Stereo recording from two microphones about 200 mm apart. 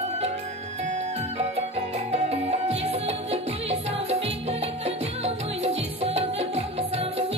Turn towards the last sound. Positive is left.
turn(degrees=-30)  # may be behind; listen again after turning